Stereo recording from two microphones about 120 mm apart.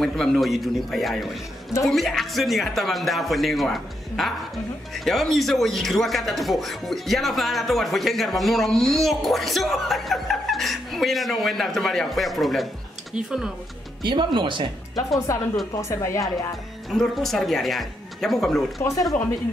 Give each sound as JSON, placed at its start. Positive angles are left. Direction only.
{"t": 0.0, "sound": "speech", "side_deg": 5}
{"t": 14.0, "sound": "speech", "side_deg": -40}
{"t": 15.3, "sound": "speech", "side_deg": 25}
{"t": 16.9, "sound": "speech", "side_deg": 5}
{"t": 18.8, "sound": "speech", "side_deg": 25}